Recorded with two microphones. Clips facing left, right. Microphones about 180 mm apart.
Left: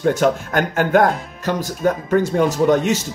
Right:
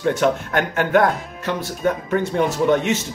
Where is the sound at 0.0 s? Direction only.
40° left (ahead or behind).